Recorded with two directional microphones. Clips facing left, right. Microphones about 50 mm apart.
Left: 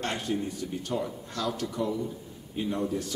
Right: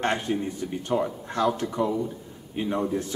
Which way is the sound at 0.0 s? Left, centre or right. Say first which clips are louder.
Right 5 dB; right.